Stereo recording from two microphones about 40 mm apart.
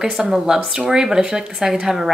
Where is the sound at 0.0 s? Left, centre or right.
Centre.